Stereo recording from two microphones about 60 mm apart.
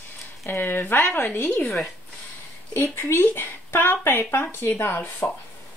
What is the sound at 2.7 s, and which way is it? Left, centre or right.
Speech, left.